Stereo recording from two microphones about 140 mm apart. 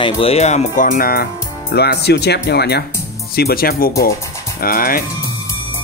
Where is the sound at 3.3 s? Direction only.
90° left.